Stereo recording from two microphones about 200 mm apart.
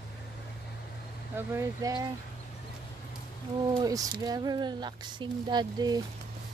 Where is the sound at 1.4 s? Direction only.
15° right (ahead or behind).